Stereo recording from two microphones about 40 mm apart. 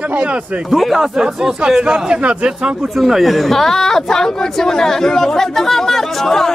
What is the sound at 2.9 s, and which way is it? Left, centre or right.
Speech, centre.